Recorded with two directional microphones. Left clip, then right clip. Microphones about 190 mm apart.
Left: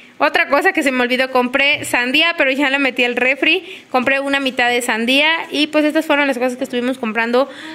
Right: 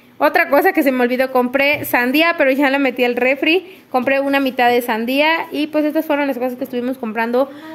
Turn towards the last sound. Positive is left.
turn(degrees=0)  # may be behind; listen again after turning